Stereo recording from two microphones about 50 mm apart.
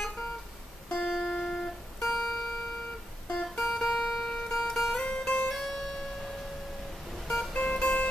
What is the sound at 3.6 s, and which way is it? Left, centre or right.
Music, centre.